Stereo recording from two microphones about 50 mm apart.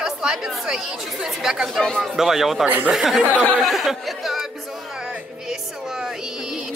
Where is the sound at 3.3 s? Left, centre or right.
Left.